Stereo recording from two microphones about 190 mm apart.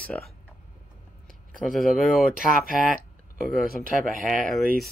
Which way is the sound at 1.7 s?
Centre (ahead or behind).